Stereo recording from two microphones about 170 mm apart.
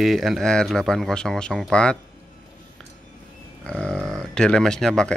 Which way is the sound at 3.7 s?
5° left (ahead or behind).